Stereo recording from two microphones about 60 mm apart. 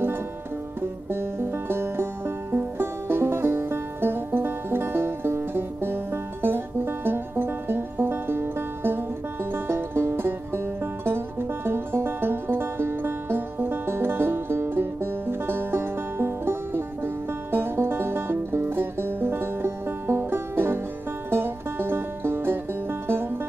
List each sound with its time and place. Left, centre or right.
1.1 s music: right